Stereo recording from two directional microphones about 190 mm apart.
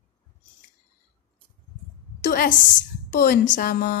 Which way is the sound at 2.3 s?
50° left (ahead or behind).